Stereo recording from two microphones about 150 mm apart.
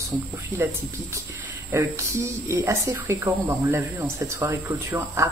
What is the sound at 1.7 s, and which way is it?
Speech, 20° right (ahead or behind).